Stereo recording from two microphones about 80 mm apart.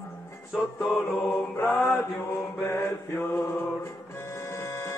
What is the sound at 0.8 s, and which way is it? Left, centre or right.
Mantra, left.